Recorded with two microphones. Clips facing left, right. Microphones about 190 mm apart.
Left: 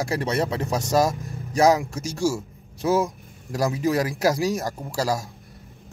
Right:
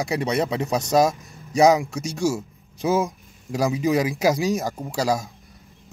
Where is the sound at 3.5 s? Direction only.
Centre (ahead or behind).